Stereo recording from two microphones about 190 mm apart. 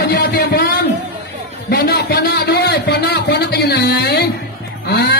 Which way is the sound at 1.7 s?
55° left (ahead or behind).